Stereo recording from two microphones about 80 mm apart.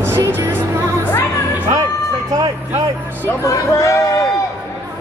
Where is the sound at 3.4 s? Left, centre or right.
Left.